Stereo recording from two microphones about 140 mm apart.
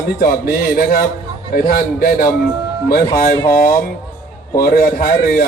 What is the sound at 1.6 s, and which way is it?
Speech, 90° left.